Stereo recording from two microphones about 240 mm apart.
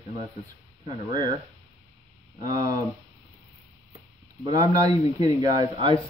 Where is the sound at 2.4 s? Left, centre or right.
Centre.